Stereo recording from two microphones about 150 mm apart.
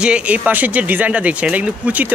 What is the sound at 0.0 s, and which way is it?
Speech, 10° right (ahead or behind).